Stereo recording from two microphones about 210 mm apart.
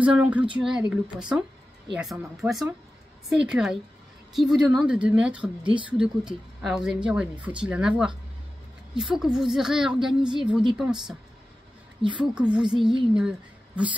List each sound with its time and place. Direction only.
0.0 s a woman's voice: 5° right (ahead or behind)
5.6 s speech: 25° right (ahead or behind)
5.9 s a woman's voice: 5° right (ahead or behind)
9.1 s a woman's voice: centre (ahead or behind)
12.2 s a woman's voice: 5° right (ahead or behind)